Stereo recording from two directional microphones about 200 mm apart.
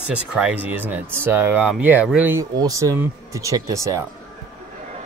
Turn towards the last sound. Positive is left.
turn(degrees=-15)  # may be behind; listen again after turning